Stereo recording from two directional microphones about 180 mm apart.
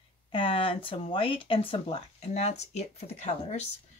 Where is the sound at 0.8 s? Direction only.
30° left (ahead or behind).